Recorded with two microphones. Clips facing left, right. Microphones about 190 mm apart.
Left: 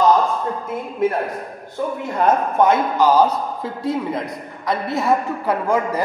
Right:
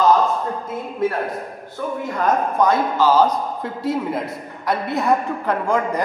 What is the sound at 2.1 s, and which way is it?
A man's voice, 25° left (ahead or behind).